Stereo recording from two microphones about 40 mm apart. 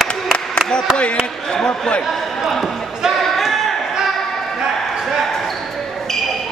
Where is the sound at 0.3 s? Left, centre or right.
Centre.